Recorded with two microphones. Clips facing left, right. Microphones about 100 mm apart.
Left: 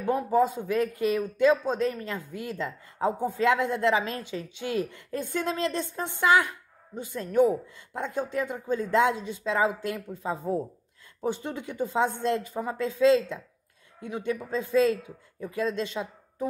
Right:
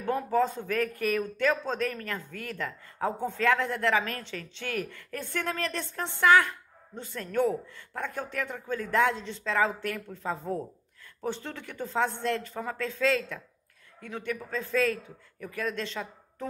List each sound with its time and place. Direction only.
0.0 s a man's voice: 15° left (ahead or behind)